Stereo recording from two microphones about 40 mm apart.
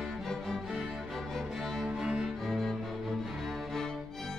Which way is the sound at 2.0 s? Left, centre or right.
Centre.